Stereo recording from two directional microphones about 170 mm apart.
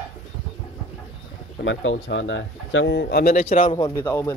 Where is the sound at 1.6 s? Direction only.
90° left; by 3.3 s 75° left (ahead or behind).